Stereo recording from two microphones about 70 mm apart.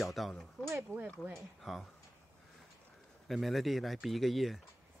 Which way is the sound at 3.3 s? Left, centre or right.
Centre.